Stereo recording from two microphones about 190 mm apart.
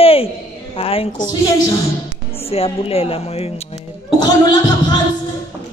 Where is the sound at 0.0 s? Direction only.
30° left (ahead or behind).